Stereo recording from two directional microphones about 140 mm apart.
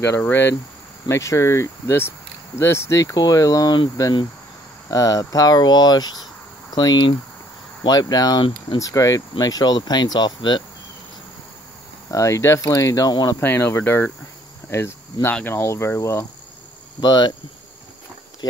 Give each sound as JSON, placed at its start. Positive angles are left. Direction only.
{"t": 0.0, "sound": "speech", "side_deg": 15}
{"t": 12.1, "sound": "speech", "side_deg": 20}
{"t": 13.4, "sound": "speech", "side_deg": 15}
{"t": 17.0, "sound": "speech", "side_deg": 30}
{"t": 18.4, "sound": "insect", "side_deg": 30}